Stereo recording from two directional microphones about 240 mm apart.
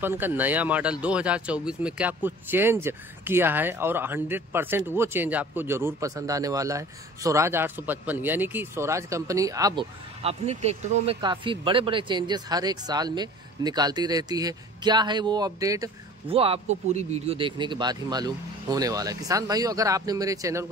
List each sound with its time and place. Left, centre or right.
0.0 s speech: centre